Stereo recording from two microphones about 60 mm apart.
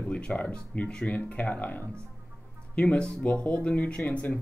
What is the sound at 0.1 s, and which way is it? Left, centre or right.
Speech, centre.